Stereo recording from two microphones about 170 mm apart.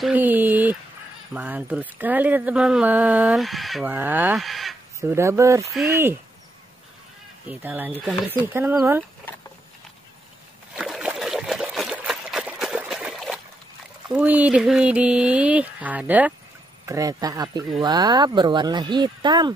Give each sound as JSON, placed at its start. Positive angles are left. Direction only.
{"t": 0.0, "sound": "a sound", "side_deg": -10}
{"t": 1.3, "sound": "speech", "side_deg": -10}
{"t": 3.9, "sound": "speech", "side_deg": -10}
{"t": 4.4, "sound": "speech", "side_deg": 0}
{"t": 5.1, "sound": "speech", "side_deg": -15}
{"t": 7.4, "sound": "speech", "side_deg": -10}
{"t": 10.7, "sound": "trickle", "side_deg": 0}
{"t": 14.0, "sound": "speech", "side_deg": -5}